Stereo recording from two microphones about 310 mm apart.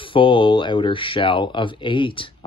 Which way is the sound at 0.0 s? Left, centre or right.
Centre.